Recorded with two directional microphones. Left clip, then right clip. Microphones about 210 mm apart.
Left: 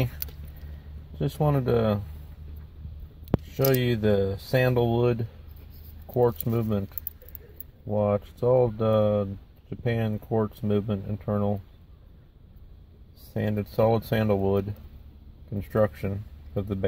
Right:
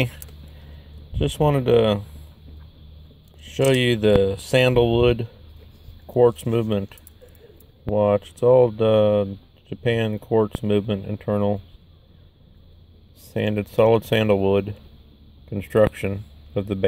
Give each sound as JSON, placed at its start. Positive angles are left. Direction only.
{"t": 1.4, "sound": "speech", "side_deg": -35}
{"t": 3.5, "sound": "speech", "side_deg": -35}
{"t": 6.0, "sound": "speech", "side_deg": -30}
{"t": 7.9, "sound": "speech", "side_deg": -35}
{"t": 13.3, "sound": "speech", "side_deg": -35}